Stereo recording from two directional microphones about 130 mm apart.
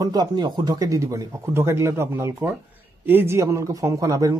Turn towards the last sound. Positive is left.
turn(degrees=-25)  # may be behind; listen again after turning